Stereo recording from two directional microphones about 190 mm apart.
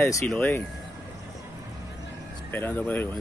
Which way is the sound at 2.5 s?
10° left (ahead or behind).